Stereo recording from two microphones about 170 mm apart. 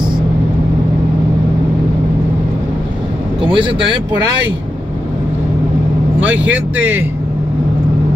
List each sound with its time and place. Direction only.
3.4 s speech: 30° right (ahead or behind)
6.5 s speech: 10° right (ahead or behind)